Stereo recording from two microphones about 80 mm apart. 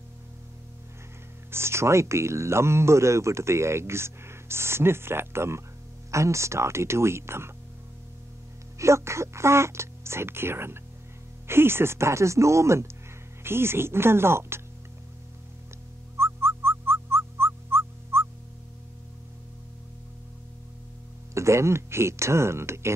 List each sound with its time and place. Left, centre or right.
1.5 s speech: right
8.7 s speech: right
16.2 s music: right
21.4 s speech: right